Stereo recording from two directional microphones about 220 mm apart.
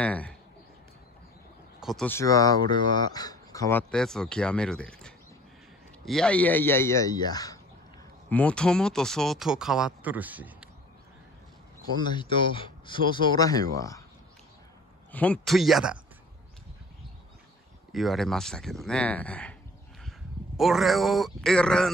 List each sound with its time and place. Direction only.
0.0 s speech: 5° left (ahead or behind)
1.8 s speech: centre (ahead or behind)
2.0 s speech: 15° left (ahead or behind)
8.3 s speech: 5° left (ahead or behind)
12.0 s speech: 20° left (ahead or behind)
15.0 s speech: 5° left (ahead or behind)
17.9 s speech: centre (ahead or behind)
20.5 s speech: centre (ahead or behind)